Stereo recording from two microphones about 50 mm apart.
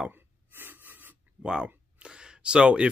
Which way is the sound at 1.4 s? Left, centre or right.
Right.